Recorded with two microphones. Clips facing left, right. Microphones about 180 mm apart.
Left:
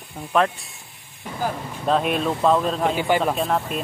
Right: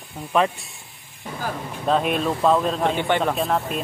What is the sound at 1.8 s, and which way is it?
Speech, centre (ahead or behind).